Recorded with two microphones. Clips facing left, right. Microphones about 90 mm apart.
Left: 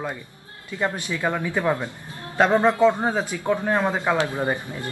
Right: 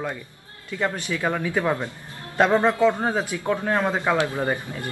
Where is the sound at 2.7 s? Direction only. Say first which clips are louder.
Left 2 dB; 15° left (ahead or behind).